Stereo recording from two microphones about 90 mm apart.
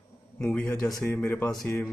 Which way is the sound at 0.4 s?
15° left (ahead or behind).